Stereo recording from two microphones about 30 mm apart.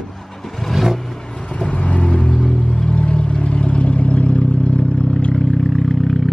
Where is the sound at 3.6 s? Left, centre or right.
Left.